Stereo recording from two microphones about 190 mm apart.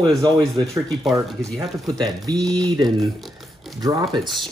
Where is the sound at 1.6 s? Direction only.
20° right (ahead or behind).